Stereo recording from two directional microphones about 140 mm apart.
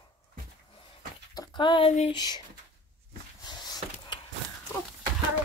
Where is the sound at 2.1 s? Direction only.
30° left (ahead or behind).